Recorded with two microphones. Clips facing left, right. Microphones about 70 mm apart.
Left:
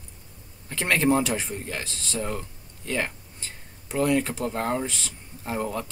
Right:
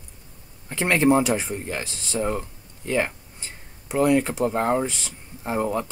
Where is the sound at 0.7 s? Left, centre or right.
Centre.